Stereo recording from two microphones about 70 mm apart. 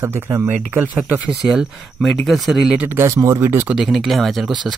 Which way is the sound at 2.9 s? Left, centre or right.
Right.